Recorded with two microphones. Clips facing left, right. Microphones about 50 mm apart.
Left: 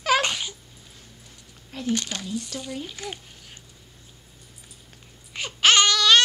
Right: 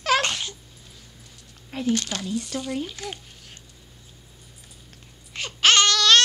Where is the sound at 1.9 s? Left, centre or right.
Centre.